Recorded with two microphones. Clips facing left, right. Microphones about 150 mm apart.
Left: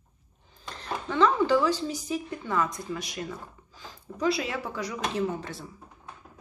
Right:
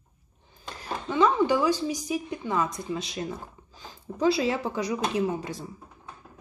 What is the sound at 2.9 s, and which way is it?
Speech, 25° right (ahead or behind).